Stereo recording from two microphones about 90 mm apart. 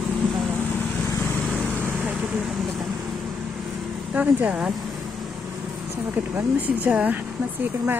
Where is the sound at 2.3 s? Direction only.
Centre (ahead or behind).